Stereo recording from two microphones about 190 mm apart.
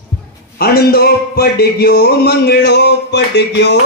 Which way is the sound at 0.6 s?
55° left (ahead or behind).